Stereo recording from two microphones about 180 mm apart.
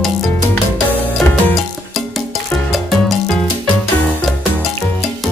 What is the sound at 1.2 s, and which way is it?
Music, centre (ahead or behind).